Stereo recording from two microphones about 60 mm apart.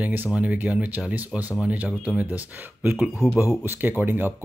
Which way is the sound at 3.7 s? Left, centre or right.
Right.